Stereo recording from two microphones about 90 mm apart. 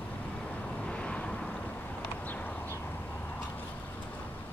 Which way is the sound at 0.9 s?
10° left (ahead or behind).